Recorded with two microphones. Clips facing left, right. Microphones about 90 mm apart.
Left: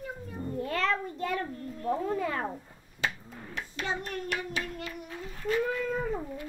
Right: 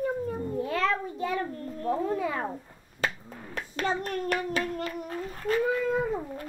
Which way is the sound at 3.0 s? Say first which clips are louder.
Right 2 dB; 45° right (ahead or behind).